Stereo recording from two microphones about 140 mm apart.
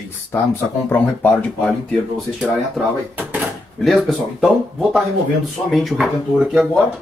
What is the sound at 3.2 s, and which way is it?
Drawer open or close, 10° right (ahead or behind).